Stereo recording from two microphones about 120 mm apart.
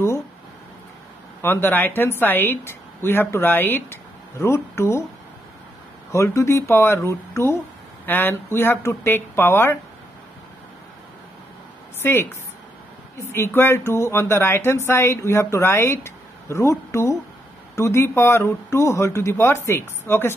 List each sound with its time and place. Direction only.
1.4 s speech: 15° left (ahead or behind)
6.1 s speech: 25° left (ahead or behind)
12.0 s a woman's voice: 20° left (ahead or behind)
13.3 s speech: 20° left (ahead or behind)